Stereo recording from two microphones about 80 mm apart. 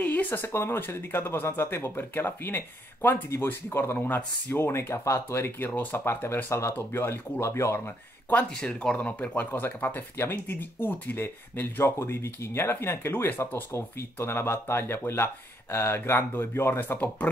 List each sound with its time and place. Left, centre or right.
0.0 s speech: left
5.7 s speech: left
8.5 s speech: centre